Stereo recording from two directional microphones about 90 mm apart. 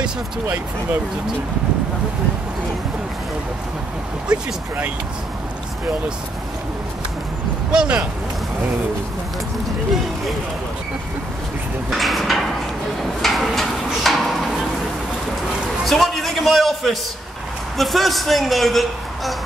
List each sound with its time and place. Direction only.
4.3 s speech: 20° right (ahead or behind)
7.7 s speech: 10° right (ahead or behind)
11.9 s a man's voice: centre (ahead or behind)
13.2 s a sound: centre (ahead or behind)
15.8 s a man's voice: centre (ahead or behind)